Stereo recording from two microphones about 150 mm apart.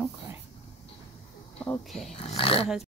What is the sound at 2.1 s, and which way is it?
Speech, 40° left (ahead or behind).